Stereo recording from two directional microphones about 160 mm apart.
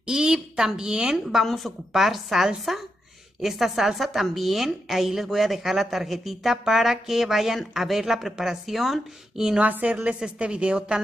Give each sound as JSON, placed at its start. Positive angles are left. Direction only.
{"t": 0.0, "sound": "a woman's voice", "side_deg": -5}